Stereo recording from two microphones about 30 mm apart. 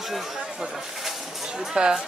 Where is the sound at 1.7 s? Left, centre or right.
Right.